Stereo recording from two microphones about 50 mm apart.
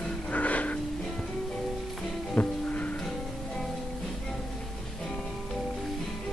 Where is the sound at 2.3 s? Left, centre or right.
Left.